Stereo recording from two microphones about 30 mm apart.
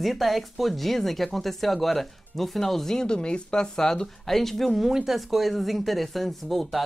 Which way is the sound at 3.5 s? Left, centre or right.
Left.